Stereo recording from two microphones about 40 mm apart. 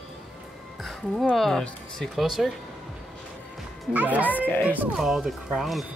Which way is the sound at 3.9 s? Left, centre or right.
Right.